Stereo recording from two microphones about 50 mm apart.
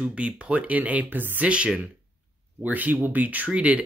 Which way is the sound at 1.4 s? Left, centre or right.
Right.